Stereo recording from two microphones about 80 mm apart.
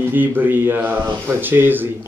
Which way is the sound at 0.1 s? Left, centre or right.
Right.